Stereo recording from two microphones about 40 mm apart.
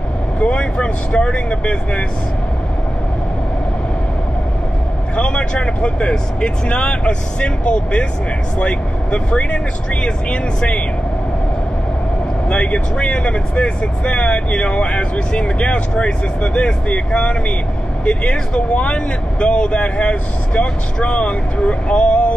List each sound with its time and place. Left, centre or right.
0.4 s speech: left
5.1 s speech: left
12.4 s speech: left